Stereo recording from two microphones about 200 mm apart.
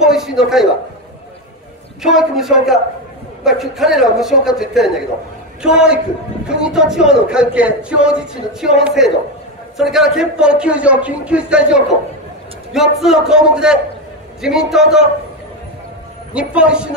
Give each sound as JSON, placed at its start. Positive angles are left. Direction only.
{"t": 0.0, "sound": "speech", "side_deg": 0}
{"t": 2.0, "sound": "speech", "side_deg": 0}
{"t": 13.0, "sound": "speech", "side_deg": 0}
{"t": 16.3, "sound": "speech", "side_deg": -5}